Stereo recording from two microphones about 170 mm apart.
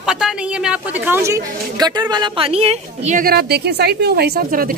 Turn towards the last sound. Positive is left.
turn(degrees=-55)  # may be behind; listen again after turning